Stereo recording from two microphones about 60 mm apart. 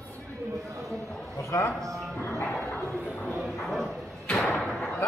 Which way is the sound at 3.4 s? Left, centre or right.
Centre.